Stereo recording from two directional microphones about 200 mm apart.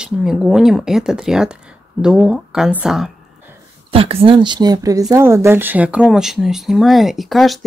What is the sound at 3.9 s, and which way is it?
Speech, 30° right (ahead or behind).